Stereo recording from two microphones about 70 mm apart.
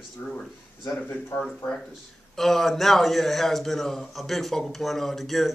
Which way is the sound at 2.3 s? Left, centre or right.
Centre.